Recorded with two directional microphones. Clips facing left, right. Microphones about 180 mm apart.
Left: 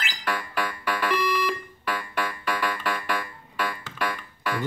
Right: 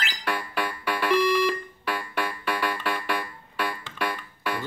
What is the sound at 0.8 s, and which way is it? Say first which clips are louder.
Music: right 4 dB; 10° right (ahead or behind).